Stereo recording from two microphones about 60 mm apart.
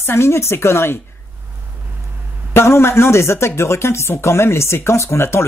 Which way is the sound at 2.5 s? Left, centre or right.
Left.